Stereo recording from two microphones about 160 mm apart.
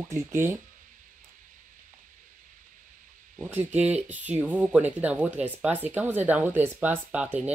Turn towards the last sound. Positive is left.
turn(degrees=-10)  # may be behind; listen again after turning